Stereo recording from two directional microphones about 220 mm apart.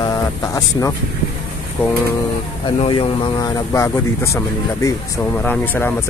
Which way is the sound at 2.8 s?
20° left (ahead or behind).